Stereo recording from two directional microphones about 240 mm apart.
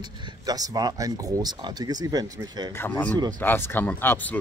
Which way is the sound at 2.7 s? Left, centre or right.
Centre.